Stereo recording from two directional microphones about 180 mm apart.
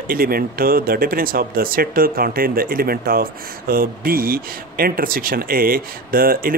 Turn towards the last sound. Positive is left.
turn(degrees=-55)  # may be behind; listen again after turning